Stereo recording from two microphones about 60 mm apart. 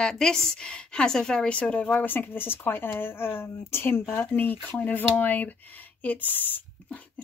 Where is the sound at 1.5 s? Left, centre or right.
Left.